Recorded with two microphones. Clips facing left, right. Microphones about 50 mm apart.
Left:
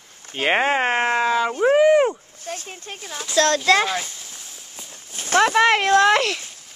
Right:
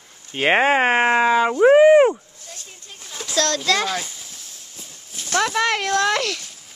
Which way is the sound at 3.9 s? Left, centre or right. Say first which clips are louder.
Even; centre.